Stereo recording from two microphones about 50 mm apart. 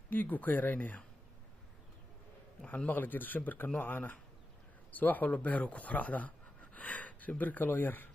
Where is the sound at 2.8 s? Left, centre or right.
Left.